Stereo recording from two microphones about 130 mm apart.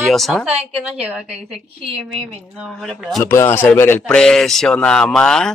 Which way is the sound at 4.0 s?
5° left (ahead or behind).